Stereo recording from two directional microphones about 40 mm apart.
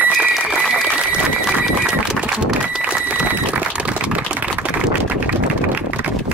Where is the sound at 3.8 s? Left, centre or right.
Right.